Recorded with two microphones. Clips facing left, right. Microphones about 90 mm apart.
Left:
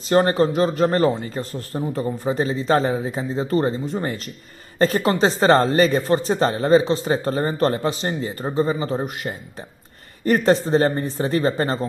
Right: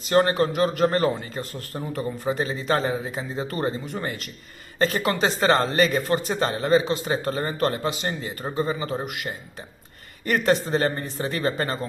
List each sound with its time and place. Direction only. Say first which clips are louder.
0.1 s a man's voice: left 3 dB; 30° left (ahead or behind)
10.2 s a man's voice: left 4 dB; 35° left (ahead or behind)